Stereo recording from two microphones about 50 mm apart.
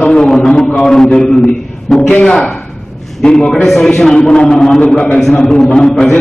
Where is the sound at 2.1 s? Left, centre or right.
Left.